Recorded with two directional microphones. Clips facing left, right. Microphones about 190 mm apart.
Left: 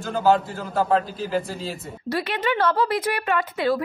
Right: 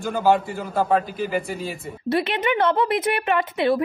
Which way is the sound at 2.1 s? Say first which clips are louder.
Right 3 dB; 20° right (ahead or behind).